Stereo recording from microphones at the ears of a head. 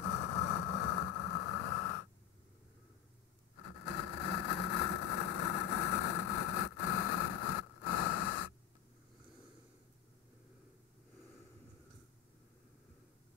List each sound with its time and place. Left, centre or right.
0.0 s vehicle: left
3.5 s vehicle: left